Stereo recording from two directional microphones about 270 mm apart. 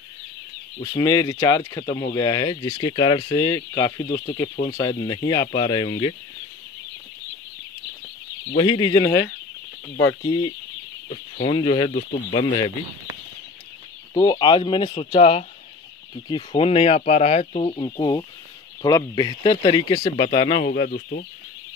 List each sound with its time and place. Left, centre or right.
0.8 s speech: centre
8.5 s speech: centre
10.2 s speech: centre
14.1 s speech: centre
20.6 s speech: left